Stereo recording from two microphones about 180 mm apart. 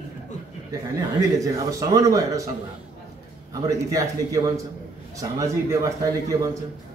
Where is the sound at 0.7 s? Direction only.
20° right (ahead or behind).